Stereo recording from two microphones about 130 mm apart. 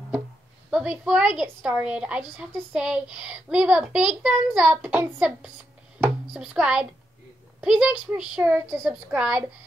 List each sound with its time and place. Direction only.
0.7 s a woman's voice: 5° right (ahead or behind)